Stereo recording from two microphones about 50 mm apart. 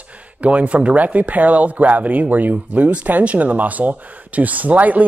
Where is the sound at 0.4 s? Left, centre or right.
Right.